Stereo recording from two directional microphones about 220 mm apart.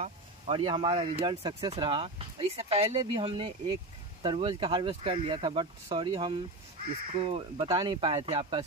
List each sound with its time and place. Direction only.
0.0 s speech: 25° right (ahead or behind)